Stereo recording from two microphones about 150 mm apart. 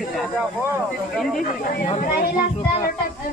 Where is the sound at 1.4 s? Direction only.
75° left (ahead or behind).